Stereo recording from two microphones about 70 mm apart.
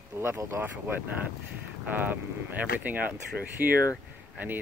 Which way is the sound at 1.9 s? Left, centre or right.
Right.